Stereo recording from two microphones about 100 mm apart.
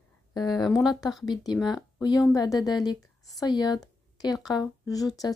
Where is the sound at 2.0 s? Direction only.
40° left (ahead or behind).